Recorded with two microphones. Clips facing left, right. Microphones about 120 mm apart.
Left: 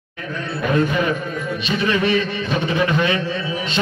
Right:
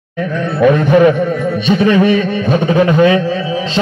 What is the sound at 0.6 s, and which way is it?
Speech, 65° right (ahead or behind).